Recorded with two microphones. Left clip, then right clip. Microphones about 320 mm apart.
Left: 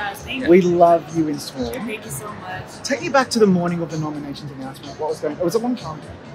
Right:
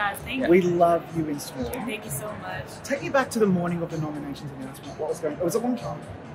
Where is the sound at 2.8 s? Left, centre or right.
Left.